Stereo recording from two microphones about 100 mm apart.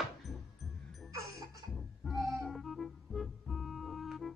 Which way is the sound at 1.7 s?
Centre (ahead or behind).